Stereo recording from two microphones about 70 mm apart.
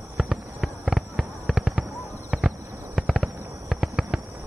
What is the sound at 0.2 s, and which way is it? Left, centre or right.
Fireworks, centre.